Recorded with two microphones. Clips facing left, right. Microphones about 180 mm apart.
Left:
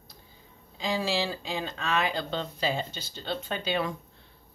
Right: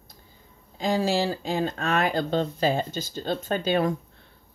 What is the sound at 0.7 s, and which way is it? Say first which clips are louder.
Speech: right 5 dB; 45° right (ahead or behind).